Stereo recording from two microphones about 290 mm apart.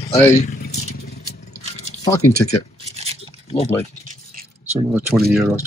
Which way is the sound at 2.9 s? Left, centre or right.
Right.